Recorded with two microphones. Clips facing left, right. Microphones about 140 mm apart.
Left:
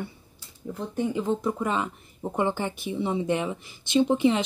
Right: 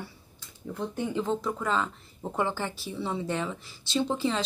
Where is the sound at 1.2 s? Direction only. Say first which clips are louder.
Even; 15° left (ahead or behind).